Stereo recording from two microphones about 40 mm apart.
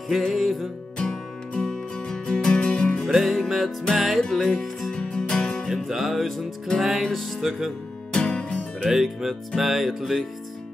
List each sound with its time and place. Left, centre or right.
0.3 s music: centre
0.9 s music: centre
3.1 s music: centre
3.9 s music: centre
4.2 s music: centre
5.1 s music: left
5.9 s music: centre
8.1 s music: centre
8.9 s speech: centre
9.6 s music: centre